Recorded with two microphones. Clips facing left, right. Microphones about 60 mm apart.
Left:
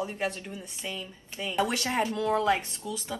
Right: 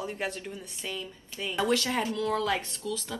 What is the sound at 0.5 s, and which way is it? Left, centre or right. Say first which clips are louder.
Speech: even; centre.